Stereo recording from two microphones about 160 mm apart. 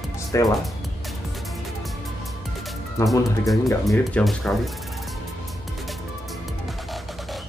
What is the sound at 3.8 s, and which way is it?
Speech, centre (ahead or behind).